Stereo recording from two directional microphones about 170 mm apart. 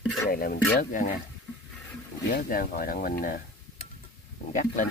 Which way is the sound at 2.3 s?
60° left (ahead or behind).